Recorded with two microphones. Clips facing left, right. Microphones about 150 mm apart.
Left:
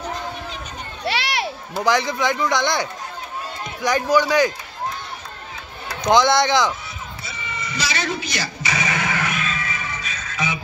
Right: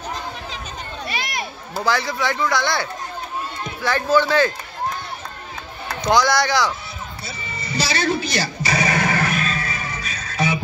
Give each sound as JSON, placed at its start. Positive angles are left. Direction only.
{"t": 1.0, "sound": "children playing", "side_deg": 80}
{"t": 1.8, "sound": "a man's voice", "side_deg": 20}
{"t": 6.0, "sound": "a man's voice", "side_deg": 20}
{"t": 7.2, "sound": "a sound", "side_deg": -35}